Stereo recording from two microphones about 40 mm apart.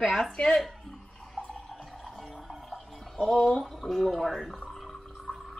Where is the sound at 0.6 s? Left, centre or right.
Centre.